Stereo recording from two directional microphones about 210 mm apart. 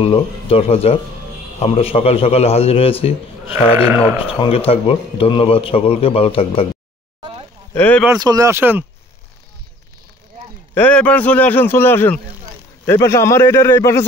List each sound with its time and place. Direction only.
0.0 s a man's voice: 25° left (ahead or behind)
3.7 s speech: 10° right (ahead or behind)
4.3 s a man's voice: 25° left (ahead or behind)
7.2 s a sound: 25° right (ahead or behind)
7.7 s speech: 10° left (ahead or behind)
8.0 s speech: 15° right (ahead or behind)
10.7 s speech: 10° left (ahead or behind)